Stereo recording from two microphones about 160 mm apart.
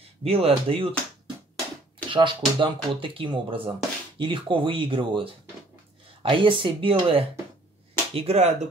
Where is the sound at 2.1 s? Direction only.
30° right (ahead or behind).